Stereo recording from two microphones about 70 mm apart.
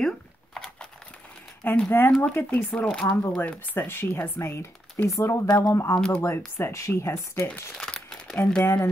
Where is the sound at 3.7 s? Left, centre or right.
Left.